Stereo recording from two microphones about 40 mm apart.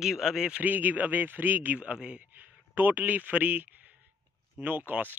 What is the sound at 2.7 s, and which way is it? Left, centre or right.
Speech, right.